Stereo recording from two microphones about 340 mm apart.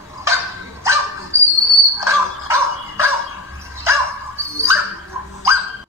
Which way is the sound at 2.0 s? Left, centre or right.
Centre.